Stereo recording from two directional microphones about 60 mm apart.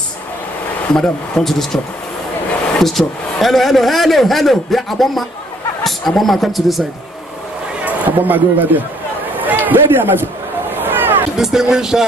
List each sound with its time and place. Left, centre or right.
0.9 s a man's voice: centre
2.8 s a man's voice: centre
7.8 s a man's voice: right
10.8 s a sound: right
11.3 s speech: centre